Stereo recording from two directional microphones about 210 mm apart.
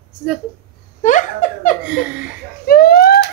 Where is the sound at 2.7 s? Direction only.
45° left (ahead or behind).